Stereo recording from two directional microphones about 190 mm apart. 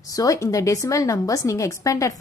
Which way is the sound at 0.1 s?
20° left (ahead or behind).